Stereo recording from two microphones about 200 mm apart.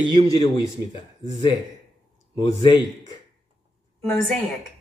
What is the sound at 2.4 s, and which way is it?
Speech, 20° left (ahead or behind).